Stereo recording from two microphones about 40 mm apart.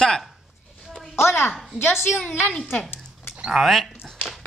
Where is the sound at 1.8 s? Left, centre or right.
Left.